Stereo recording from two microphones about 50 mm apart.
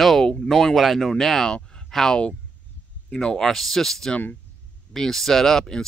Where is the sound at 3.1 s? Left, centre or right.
Centre.